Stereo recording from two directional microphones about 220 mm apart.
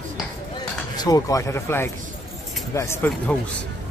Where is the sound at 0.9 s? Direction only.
15° left (ahead or behind).